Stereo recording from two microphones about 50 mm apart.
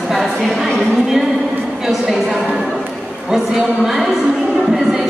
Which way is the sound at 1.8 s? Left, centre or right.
Centre.